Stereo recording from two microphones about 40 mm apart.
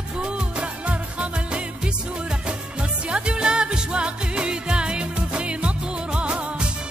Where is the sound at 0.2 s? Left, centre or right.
Right.